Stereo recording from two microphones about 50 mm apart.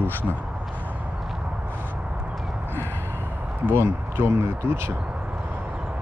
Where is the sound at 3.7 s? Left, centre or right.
Right.